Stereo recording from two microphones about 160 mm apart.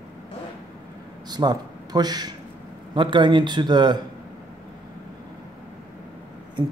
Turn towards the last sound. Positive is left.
turn(degrees=-25)  # may be behind; listen again after turning